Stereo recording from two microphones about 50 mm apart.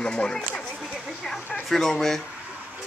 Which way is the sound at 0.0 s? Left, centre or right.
Centre.